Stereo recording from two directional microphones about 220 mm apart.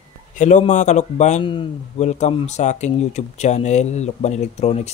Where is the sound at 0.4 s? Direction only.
35° left (ahead or behind).